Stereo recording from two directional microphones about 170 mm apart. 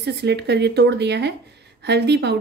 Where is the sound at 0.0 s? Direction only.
80° right.